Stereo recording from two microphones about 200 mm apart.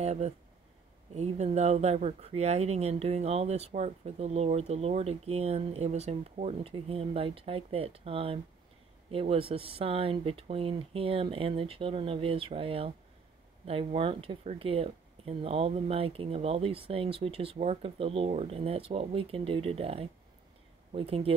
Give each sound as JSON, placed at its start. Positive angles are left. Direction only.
{"t": 0.0, "sound": "speech", "side_deg": -35}